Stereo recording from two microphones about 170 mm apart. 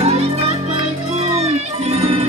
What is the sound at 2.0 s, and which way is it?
Music, 35° right (ahead or behind).